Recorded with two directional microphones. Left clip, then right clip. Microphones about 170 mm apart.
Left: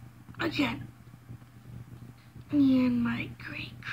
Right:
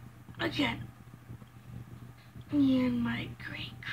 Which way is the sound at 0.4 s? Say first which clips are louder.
Left 2 dB; 15° left (ahead or behind).